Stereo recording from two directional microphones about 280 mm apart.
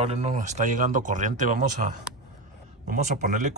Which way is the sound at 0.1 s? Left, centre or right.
Right.